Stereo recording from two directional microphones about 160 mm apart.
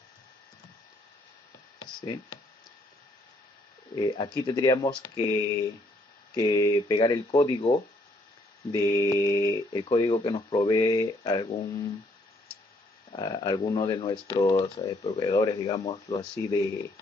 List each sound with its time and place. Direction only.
3.9 s speech: 30° left (ahead or behind)
8.7 s speech: 20° left (ahead or behind)
9.7 s speech: 30° left (ahead or behind)
13.1 s speech: 25° left (ahead or behind)